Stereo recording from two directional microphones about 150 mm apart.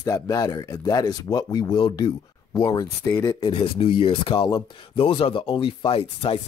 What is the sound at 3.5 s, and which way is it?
Speech, 35° left (ahead or behind).